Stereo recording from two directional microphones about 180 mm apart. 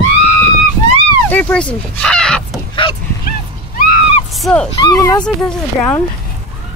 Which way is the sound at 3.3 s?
55° left (ahead or behind).